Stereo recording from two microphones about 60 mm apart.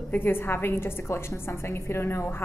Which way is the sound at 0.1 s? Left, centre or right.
Left.